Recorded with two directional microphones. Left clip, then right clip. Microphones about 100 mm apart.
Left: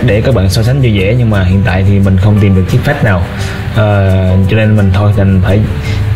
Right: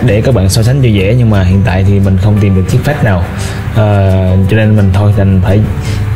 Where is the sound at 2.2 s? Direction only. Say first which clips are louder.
Left 1 dB; 10° left (ahead or behind).